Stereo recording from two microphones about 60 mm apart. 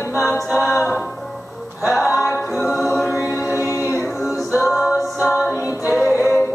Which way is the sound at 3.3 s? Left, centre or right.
Left.